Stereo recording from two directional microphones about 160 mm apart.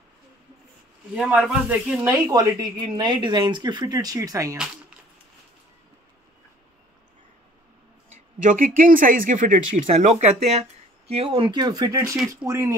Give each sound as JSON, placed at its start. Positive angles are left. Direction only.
{"t": 1.1, "sound": "speech", "side_deg": -5}
{"t": 2.3, "sound": "speech", "side_deg": -25}
{"t": 8.4, "sound": "speech", "side_deg": -55}